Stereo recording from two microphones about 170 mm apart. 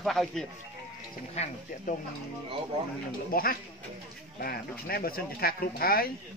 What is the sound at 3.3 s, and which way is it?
Speech, 60° left (ahead or behind).